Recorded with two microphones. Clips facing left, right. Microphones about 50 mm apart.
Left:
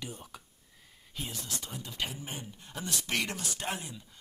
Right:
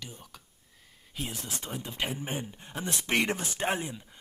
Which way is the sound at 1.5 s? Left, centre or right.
Right.